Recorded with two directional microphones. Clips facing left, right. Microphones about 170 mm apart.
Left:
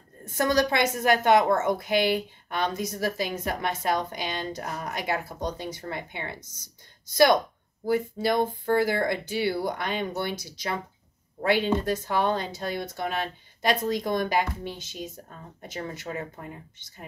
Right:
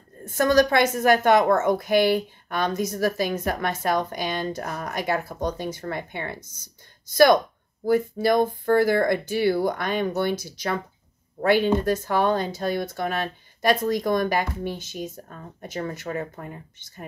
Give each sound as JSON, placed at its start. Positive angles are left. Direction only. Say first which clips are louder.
{"t": 0.2, "sound": "a woman's voice", "louder": "right 5 dB", "side_deg": -45}
{"t": 7.9, "sound": "a woman's voice", "louder": "right 4 dB", "side_deg": -45}
{"t": 11.4, "sound": "a woman's voice", "louder": "right 4 dB", "side_deg": -45}